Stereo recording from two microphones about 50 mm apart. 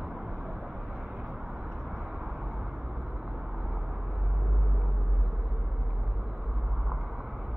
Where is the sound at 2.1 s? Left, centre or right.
Right.